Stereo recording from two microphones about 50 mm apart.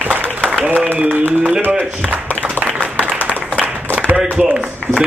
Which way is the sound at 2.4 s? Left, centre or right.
Right.